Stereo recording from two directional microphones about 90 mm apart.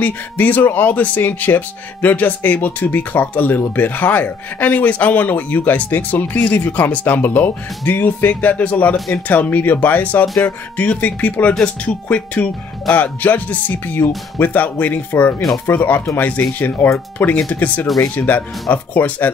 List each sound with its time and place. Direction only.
0.0 s speech: 20° left (ahead or behind)
8.9 s speech: centre (ahead or behind)
9.3 s speech: 20° left (ahead or behind)